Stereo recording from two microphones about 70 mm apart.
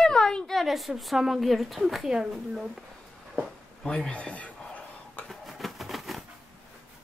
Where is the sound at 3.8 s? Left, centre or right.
Centre.